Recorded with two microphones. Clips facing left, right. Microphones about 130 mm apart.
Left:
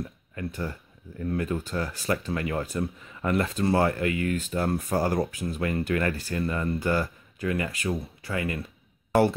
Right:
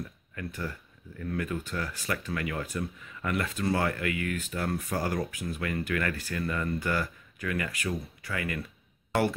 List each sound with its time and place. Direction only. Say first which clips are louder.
0.4 s speech: left 4 dB; 30° left (ahead or behind)